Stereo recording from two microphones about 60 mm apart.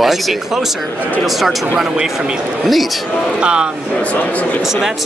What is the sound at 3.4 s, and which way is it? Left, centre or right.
Speech, centre.